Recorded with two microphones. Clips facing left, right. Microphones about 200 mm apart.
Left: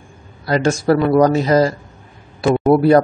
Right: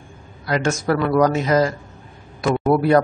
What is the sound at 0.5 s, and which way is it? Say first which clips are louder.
Speech: left 5 dB; 35° left (ahead or behind).